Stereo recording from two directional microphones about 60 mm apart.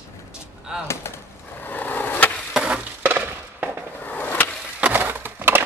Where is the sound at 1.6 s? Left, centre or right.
Left.